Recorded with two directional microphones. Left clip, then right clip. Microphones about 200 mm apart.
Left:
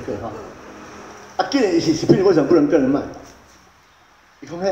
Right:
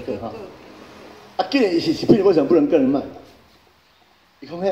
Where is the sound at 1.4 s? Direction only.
25° right (ahead or behind).